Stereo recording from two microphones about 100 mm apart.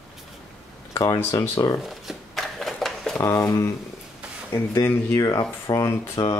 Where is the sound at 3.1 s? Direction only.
30° left (ahead or behind).